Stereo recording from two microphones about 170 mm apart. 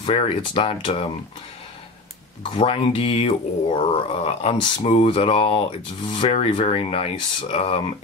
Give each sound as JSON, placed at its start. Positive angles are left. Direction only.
{"t": 0.0, "sound": "speech", "side_deg": 30}
{"t": 2.5, "sound": "speech", "side_deg": 30}